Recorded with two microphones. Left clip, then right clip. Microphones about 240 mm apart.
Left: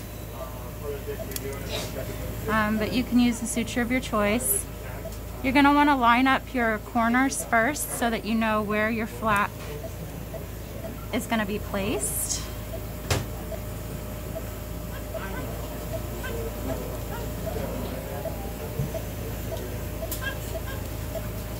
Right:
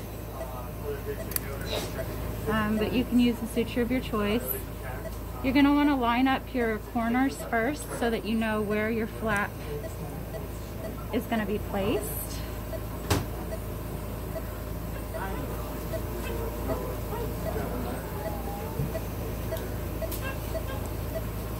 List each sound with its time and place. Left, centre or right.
2.5 s speech: left
5.4 s speech: left
11.1 s speech: left